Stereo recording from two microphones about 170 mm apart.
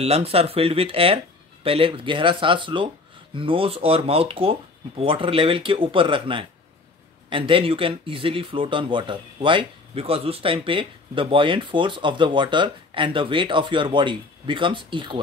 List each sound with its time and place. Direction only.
0.0 s speech: 35° right (ahead or behind)